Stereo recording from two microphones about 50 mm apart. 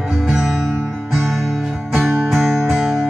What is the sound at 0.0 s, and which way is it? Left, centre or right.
Music, centre.